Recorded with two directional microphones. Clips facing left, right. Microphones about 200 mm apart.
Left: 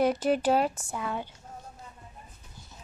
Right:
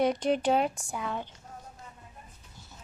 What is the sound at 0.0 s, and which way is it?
Speech, 5° left (ahead or behind).